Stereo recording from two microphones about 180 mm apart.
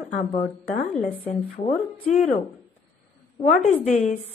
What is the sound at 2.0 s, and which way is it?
Speech, 45° left (ahead or behind).